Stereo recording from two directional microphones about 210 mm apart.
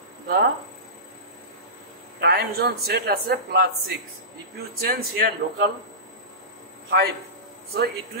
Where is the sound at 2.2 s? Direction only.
50° right (ahead or behind).